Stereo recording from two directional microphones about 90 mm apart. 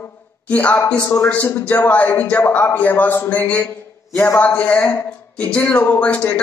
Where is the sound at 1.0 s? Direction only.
30° left (ahead or behind).